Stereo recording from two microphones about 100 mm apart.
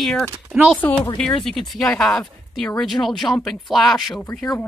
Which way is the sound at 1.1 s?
5° left (ahead or behind).